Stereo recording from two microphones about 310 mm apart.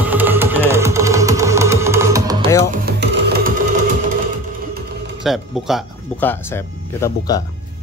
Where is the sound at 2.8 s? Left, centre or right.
Right.